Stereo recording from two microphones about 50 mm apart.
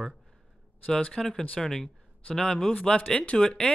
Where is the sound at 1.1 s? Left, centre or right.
Centre.